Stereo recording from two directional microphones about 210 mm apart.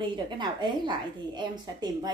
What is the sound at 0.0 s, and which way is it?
A woman's voice, 20° right (ahead or behind).